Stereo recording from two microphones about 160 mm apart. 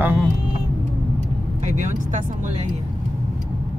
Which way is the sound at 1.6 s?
50° right (ahead or behind).